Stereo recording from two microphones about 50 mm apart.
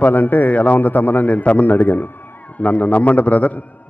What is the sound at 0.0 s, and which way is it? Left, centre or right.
A man's voice, left.